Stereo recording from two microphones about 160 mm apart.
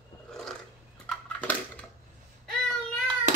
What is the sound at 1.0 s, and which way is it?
Crushing, 10° left (ahead or behind).